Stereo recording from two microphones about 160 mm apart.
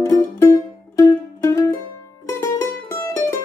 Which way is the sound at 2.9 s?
15° left (ahead or behind).